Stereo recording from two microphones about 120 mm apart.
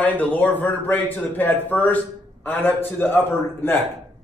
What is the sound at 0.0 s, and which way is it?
A man's voice, 15° left (ahead or behind).